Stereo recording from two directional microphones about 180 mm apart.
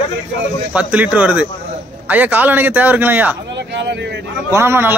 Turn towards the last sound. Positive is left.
turn(degrees=-15)  # may be behind; listen again after turning